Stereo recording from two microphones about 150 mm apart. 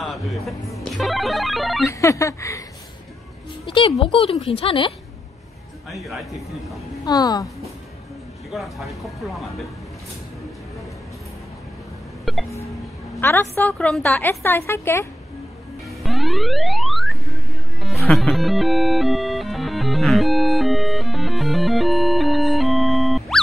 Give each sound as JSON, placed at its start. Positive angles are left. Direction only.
{"t": 0.0, "sound": "speech", "side_deg": 0}
{"t": 1.9, "sound": "speech", "side_deg": 20}
{"t": 3.6, "sound": "speech", "side_deg": 35}
{"t": 5.9, "sound": "speech", "side_deg": 0}
{"t": 7.1, "sound": "speech", "side_deg": 25}
{"t": 8.5, "sound": "speech", "side_deg": 0}
{"t": 12.3, "sound": "music", "side_deg": 0}
{"t": 13.2, "sound": "a woman's voice", "side_deg": 15}
{"t": 16.0, "sound": "music", "side_deg": 0}